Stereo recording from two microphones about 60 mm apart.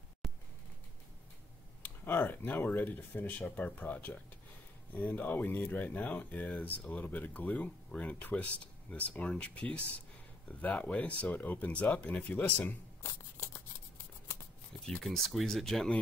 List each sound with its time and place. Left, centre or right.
0.2 s a sound: centre
2.0 s speech: left
15.0 s speech: centre